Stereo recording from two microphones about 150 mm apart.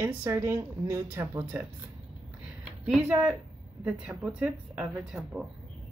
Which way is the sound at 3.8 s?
5° right (ahead or behind).